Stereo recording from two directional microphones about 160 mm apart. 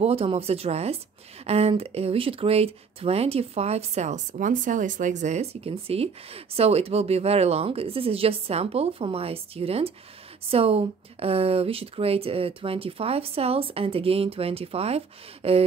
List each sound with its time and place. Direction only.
0.0 s speech: 40° right (ahead or behind)